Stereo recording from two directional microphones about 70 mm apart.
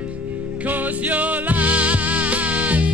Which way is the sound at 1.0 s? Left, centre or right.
Right.